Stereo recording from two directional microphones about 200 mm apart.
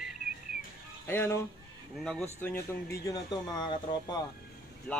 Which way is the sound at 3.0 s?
20° left (ahead or behind).